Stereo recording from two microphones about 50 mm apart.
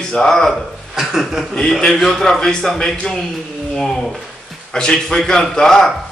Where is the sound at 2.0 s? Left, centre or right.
Centre.